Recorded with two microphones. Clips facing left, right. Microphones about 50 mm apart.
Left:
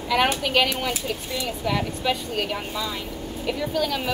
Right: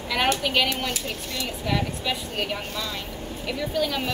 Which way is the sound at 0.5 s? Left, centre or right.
Centre.